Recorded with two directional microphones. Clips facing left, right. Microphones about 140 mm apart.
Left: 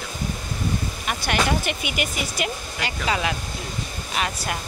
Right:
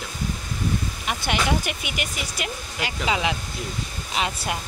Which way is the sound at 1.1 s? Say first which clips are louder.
Left 1 dB; 15° right (ahead or behind).